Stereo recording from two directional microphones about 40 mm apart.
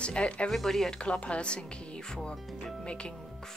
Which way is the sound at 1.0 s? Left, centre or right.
Left.